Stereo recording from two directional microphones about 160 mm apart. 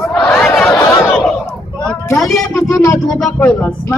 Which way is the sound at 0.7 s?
20° left (ahead or behind).